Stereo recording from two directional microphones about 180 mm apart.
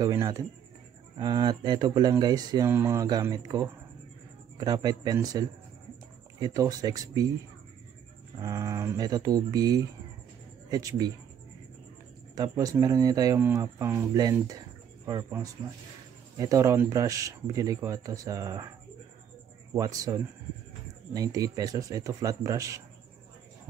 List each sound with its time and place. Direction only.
0.0 s speech: 20° right (ahead or behind)
8.4 s speech: 15° right (ahead or behind)
12.4 s speech: 20° right (ahead or behind)
19.7 s speech: 20° right (ahead or behind)